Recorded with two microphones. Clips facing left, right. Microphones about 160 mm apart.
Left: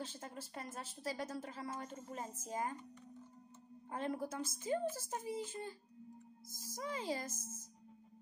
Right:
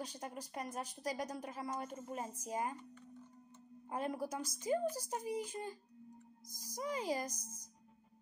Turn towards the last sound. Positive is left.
turn(degrees=-15)  # may be behind; listen again after turning